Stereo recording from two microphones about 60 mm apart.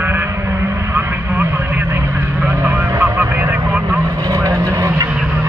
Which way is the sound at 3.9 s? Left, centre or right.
Right.